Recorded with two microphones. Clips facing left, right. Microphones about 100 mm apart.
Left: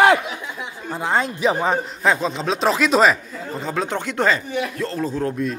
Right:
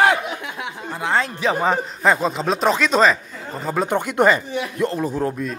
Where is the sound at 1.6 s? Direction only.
Centre (ahead or behind).